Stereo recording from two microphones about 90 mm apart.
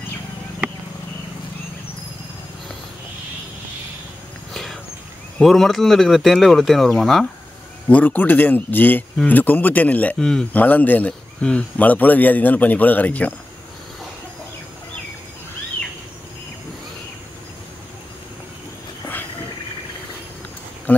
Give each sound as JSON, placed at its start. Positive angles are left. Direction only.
{"t": 5.4, "sound": "speech", "side_deg": 0}
{"t": 7.9, "sound": "speech", "side_deg": 20}
{"t": 10.1, "sound": "speech", "side_deg": 5}
{"t": 10.5, "sound": "speech", "side_deg": 20}